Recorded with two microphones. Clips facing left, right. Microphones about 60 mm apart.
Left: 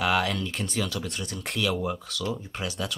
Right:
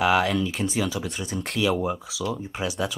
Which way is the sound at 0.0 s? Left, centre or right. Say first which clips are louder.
Right 4 dB; centre.